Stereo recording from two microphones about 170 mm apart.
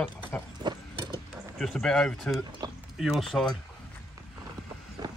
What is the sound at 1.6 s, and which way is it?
Speech, 5° left (ahead or behind).